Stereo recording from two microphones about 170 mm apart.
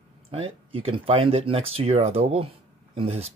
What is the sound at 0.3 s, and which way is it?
Speech, 35° right (ahead or behind).